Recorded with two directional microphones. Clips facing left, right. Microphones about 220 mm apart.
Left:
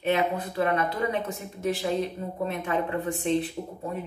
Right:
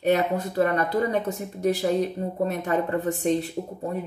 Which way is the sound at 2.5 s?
40° right (ahead or behind).